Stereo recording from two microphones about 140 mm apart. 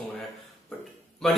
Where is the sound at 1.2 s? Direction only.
5° left (ahead or behind).